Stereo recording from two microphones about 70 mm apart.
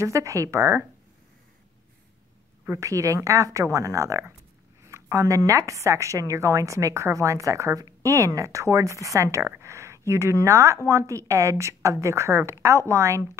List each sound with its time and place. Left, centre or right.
0.0 s speech: right
2.8 s speech: right